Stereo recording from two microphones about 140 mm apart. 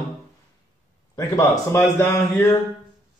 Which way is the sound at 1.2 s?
20° left (ahead or behind).